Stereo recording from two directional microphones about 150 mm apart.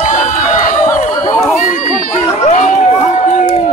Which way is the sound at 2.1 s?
55° left (ahead or behind).